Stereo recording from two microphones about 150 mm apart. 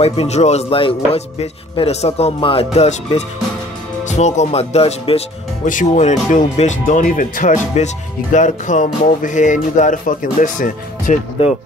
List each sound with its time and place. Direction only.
0.0 s a man's voice: 40° left (ahead or behind)
5.7 s speech: 55° left (ahead or behind)